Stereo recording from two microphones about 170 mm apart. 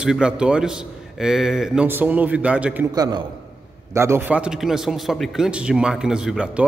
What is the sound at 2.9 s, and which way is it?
A man's voice, 25° right (ahead or behind).